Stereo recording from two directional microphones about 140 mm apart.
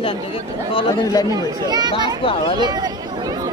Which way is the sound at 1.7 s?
30° right (ahead or behind).